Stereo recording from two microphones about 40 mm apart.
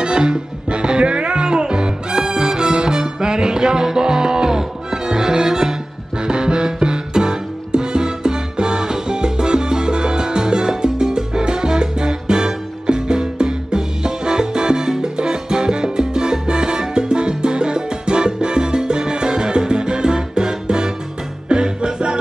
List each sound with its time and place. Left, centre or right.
0.0 s music: right